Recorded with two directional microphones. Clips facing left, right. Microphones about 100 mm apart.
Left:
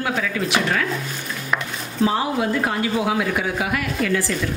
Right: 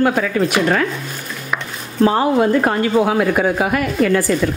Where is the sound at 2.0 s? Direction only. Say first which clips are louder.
Right 7 dB; 50° right (ahead or behind).